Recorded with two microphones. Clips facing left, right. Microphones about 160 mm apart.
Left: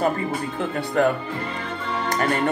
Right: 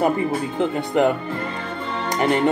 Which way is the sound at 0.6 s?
20° right (ahead or behind).